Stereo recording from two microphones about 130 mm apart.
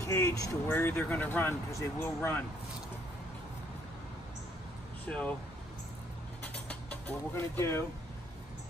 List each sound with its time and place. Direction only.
0.0 s speech: 20° left (ahead or behind)
5.0 s speech: 10° left (ahead or behind)
6.4 s mechanisms: 10° left (ahead or behind)